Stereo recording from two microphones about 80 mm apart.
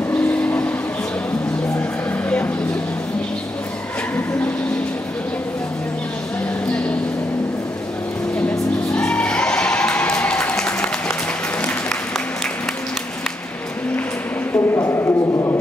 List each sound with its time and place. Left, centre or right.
0.4 s vehicle: left
2.2 s vehicle: centre
8.9 s music: centre
14.5 s a sound: left